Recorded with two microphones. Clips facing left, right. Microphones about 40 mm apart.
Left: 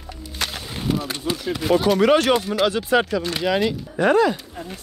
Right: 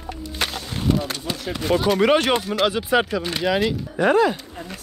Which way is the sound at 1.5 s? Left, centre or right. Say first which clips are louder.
Left 1 dB; centre.